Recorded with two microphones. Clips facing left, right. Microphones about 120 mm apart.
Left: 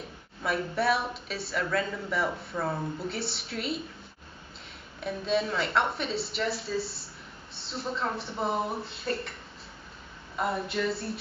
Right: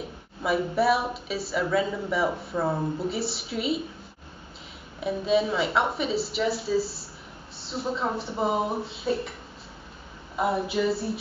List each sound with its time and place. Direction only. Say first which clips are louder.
0.4 s a woman's voice: right 5 dB; 5° right (ahead or behind)
2.5 s speech: right 5 dB; 15° right (ahead or behind)
3.0 s a woman's voice: right 5 dB; centre (ahead or behind)
5.0 s a woman's voice: right 5 dB; 5° right (ahead or behind)
10.3 s a woman's voice: right 4 dB; 5° right (ahead or behind)